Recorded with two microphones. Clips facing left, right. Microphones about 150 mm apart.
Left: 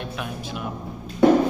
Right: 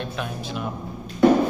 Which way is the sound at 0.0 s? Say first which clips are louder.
Right 1 dB; 10° left (ahead or behind).